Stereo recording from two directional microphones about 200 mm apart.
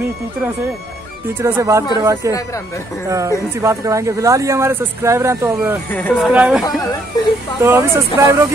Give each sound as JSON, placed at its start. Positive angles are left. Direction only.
{"t": 1.4, "sound": "speech", "side_deg": -15}
{"t": 5.9, "sound": "speech", "side_deg": 5}
{"t": 7.6, "sound": "speech", "side_deg": -10}